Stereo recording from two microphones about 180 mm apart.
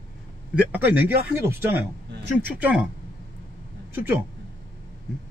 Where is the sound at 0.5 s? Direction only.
10° right (ahead or behind).